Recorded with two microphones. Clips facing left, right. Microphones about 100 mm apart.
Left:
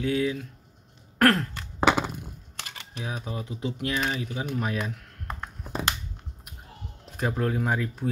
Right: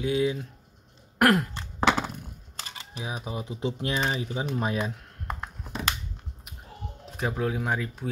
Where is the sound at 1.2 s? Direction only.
15° right (ahead or behind).